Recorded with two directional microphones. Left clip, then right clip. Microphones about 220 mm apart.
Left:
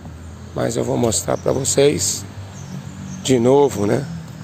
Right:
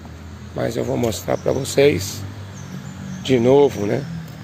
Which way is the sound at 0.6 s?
10° left (ahead or behind).